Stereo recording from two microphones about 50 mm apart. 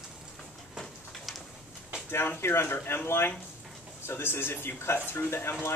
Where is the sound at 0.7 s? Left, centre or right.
Centre.